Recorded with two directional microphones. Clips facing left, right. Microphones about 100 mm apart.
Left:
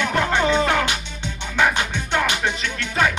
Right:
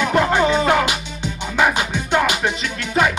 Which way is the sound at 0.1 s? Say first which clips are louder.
Right 3 dB; 10° right (ahead or behind).